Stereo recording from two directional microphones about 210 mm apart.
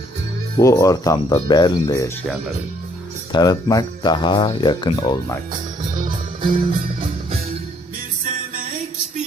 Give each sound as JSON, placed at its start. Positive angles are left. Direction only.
{"t": 0.6, "sound": "speech", "side_deg": 15}
{"t": 3.3, "sound": "speech", "side_deg": 20}
{"t": 6.4, "sound": "music", "side_deg": -40}